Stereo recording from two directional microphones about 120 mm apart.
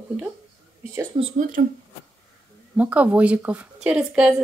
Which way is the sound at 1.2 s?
40° right (ahead or behind).